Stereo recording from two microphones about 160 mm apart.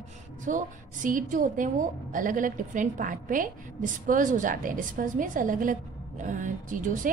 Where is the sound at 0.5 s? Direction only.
55° right (ahead or behind).